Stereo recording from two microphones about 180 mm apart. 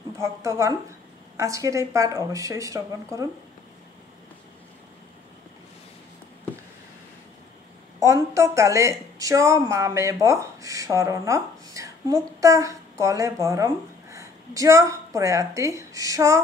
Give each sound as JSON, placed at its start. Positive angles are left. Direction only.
{"t": 0.2, "sound": "a woman's voice", "side_deg": -15}
{"t": 8.0, "sound": "a woman's voice", "side_deg": -15}